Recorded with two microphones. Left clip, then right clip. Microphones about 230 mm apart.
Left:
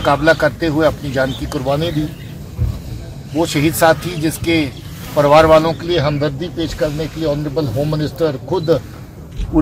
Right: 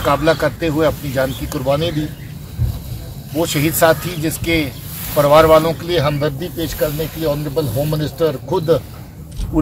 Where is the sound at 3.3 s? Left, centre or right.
Centre.